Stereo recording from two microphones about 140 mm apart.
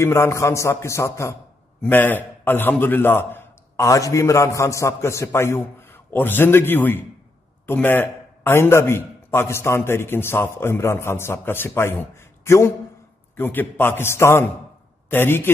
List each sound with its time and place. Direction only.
0.0 s a man's voice: 20° left (ahead or behind)